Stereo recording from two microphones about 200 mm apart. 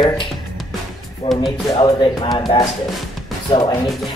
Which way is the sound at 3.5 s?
20° left (ahead or behind).